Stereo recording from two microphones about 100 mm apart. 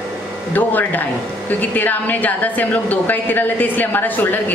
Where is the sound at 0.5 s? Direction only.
15° left (ahead or behind).